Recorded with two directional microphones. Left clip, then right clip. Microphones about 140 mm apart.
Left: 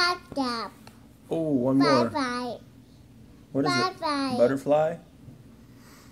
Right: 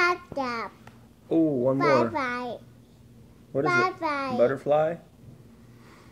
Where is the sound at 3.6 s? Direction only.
Centre (ahead or behind).